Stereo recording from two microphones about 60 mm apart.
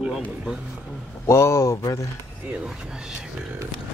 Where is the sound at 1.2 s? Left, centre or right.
Left.